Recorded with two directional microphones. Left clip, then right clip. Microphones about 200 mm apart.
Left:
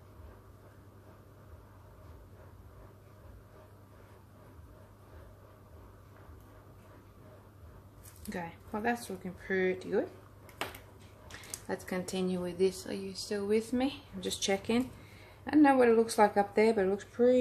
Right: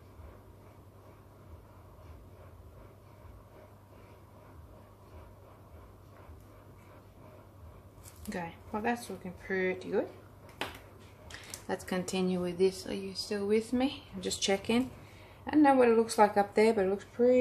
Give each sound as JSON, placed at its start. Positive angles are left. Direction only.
{"t": 8.3, "sound": "speech", "side_deg": 5}
{"t": 11.6, "sound": "speech", "side_deg": -5}
{"t": 15.4, "sound": "speech", "side_deg": 20}